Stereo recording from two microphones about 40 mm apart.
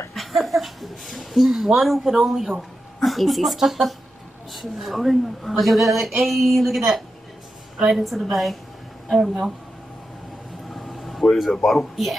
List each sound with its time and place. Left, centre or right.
0.1 s a woman's voice: centre
10.7 s vehicle: centre
11.3 s a woman's voice: centre